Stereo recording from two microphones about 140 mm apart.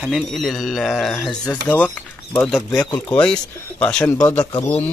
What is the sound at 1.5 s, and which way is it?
Speech, 10° left (ahead or behind).